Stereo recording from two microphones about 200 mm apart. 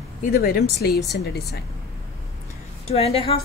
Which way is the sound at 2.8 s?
30° left (ahead or behind).